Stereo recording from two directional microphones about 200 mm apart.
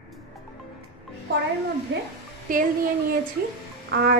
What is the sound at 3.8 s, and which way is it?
Music, 50° right (ahead or behind).